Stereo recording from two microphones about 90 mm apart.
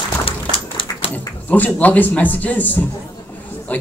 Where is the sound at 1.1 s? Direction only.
20° left (ahead or behind).